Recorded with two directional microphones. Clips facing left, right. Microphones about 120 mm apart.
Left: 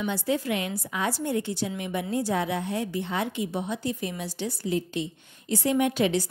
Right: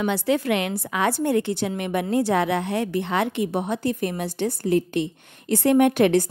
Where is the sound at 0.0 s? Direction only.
75° right (ahead or behind).